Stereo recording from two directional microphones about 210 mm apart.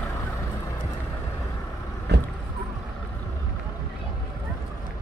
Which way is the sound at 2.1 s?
50° right (ahead or behind).